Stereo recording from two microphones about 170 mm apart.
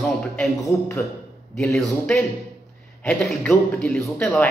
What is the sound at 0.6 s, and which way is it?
Speech, 15° left (ahead or behind).